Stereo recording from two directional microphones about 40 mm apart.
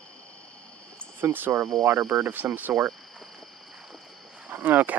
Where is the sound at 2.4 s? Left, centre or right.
Right.